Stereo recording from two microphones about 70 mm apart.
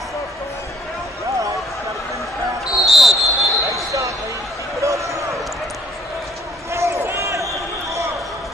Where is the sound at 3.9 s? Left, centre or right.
Right.